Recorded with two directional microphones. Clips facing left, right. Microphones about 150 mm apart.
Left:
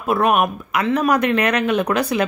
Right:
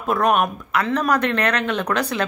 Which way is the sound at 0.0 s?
10° left (ahead or behind).